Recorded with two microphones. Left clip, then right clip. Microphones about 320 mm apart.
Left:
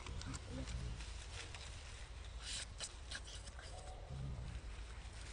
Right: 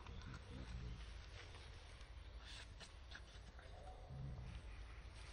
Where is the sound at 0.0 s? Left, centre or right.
Left.